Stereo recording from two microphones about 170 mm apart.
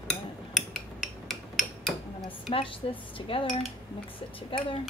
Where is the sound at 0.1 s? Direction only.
Centre (ahead or behind).